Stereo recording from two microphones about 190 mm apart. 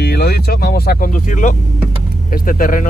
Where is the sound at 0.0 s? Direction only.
55° left (ahead or behind).